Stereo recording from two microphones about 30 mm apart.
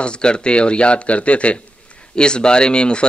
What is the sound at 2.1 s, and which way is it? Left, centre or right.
Speech, left.